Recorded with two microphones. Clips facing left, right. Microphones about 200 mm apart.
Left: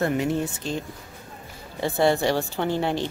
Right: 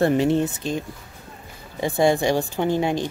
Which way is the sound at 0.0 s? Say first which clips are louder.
Right 5 dB; 30° right (ahead or behind).